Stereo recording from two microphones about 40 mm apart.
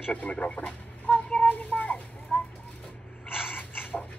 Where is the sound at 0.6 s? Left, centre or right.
Left.